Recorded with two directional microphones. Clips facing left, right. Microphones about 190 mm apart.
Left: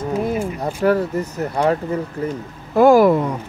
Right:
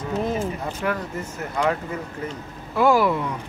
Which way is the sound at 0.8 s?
40° left (ahead or behind).